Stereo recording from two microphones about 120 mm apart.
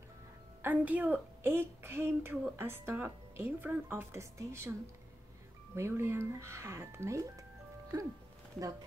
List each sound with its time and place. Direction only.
0.6 s speech: 15° right (ahead or behind)
5.8 s speech: 20° right (ahead or behind)